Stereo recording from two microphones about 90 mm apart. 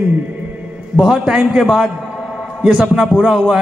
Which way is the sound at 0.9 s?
10° right (ahead or behind).